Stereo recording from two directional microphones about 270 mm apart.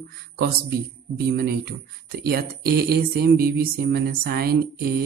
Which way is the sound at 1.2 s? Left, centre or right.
Right.